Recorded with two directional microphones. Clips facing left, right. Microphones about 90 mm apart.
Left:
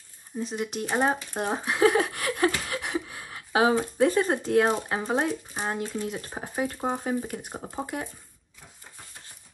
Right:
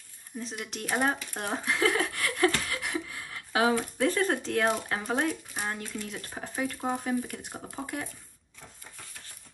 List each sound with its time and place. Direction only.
0.3 s speech: 30° left (ahead or behind)